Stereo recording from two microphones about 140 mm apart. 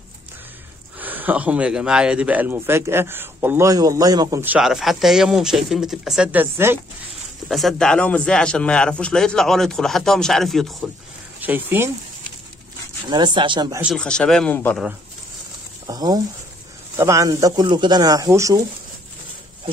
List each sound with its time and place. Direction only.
0.9 s speech: 10° right (ahead or behind)
4.4 s a man's voice: 10° right (ahead or behind)
7.4 s a man's voice: centre (ahead or behind)
11.4 s speech: 15° right (ahead or behind)
13.1 s speech: 35° right (ahead or behind)
13.9 s speech: 5° left (ahead or behind)
15.9 s speech: 25° right (ahead or behind)